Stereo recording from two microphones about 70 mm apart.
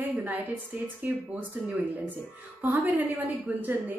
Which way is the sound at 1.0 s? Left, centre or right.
Right.